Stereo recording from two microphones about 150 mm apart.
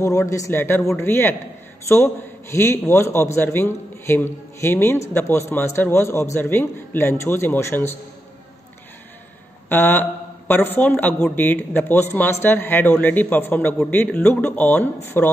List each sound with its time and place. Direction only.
0.3 s a man's voice: 20° left (ahead or behind)
2.5 s a man's voice: 20° left (ahead or behind)
9.7 s a man's voice: 15° left (ahead or behind)